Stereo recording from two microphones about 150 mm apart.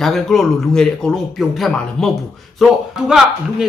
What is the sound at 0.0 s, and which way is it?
A man's voice, centre (ahead or behind).